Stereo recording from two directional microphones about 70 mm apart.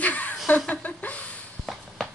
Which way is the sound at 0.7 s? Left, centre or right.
Left.